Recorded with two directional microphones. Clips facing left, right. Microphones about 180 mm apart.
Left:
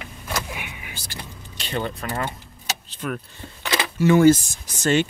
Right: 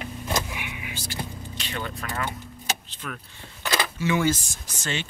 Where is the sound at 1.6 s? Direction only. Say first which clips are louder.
Left 7 dB; 30° left (ahead or behind).